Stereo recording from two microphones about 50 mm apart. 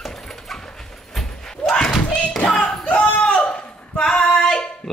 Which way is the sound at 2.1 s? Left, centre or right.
Left.